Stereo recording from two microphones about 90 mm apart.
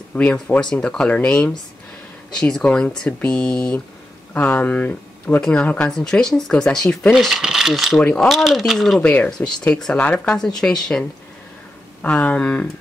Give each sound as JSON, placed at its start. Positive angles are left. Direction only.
{"t": 0.1, "sound": "speech", "side_deg": 15}
{"t": 7.1, "sound": "speech", "side_deg": -5}
{"t": 9.0, "sound": "speech", "side_deg": 15}